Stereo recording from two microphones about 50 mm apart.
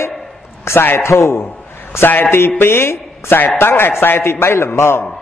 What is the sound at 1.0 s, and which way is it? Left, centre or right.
Speech, left.